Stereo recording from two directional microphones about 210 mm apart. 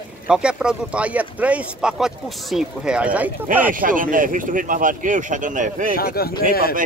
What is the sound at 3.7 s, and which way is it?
Speech, 40° right (ahead or behind).